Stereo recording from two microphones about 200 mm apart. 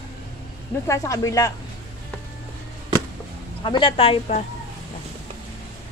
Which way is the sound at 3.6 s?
25° left (ahead or behind).